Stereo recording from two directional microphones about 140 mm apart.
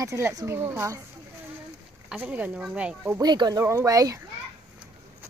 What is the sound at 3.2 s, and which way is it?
A child's voice, 30° right (ahead or behind).